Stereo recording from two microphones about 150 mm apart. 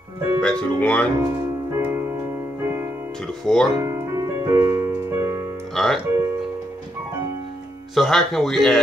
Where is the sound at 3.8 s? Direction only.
15° right (ahead or behind).